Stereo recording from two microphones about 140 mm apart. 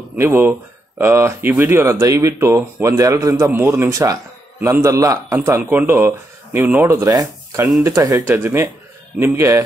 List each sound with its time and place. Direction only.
0.1 s speech: 15° right (ahead or behind)